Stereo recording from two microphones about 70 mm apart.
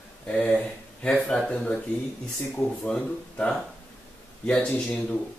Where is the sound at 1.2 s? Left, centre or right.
Centre.